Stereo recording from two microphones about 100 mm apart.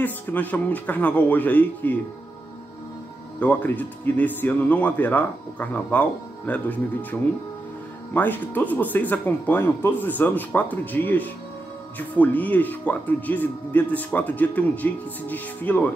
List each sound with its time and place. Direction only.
0.0 s speech: 15° left (ahead or behind)
3.3 s speech: 15° left (ahead or behind)